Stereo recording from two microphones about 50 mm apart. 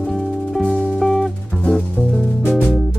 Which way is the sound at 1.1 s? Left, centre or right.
Centre.